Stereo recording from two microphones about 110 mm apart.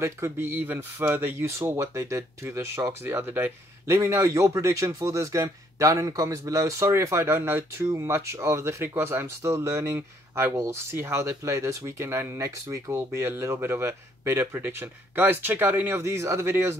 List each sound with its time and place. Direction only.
0.0 s speech: 25° right (ahead or behind)